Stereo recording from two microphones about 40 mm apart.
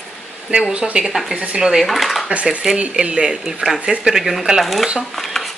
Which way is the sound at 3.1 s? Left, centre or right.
Centre.